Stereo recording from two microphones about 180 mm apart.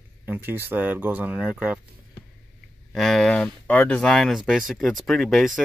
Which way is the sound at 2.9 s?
Centre (ahead or behind).